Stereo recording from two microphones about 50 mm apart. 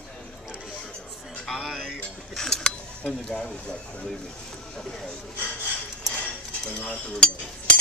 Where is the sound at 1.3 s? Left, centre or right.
Centre.